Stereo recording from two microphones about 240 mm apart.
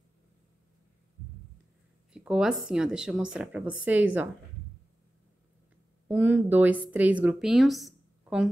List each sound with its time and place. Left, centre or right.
2.1 s a woman's voice: centre
6.0 s speech: centre